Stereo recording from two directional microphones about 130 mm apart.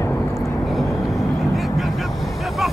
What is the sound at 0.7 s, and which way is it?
Vehicle, centre (ahead or behind).